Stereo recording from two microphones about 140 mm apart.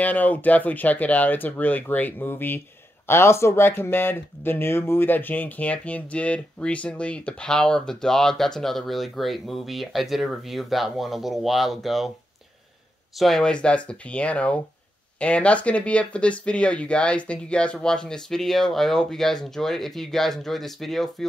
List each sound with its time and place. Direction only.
0.0 s speech: 10° left (ahead or behind)
13.1 s speech: centre (ahead or behind)